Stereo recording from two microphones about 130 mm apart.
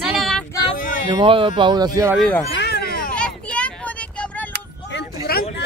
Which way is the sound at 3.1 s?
10° left (ahead or behind).